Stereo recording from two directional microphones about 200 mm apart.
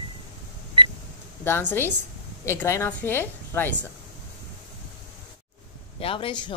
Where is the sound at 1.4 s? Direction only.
10° left (ahead or behind).